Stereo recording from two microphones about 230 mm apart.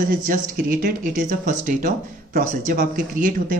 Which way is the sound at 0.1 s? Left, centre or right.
Right.